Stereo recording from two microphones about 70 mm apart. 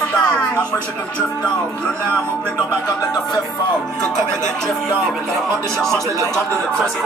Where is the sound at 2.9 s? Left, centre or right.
Left.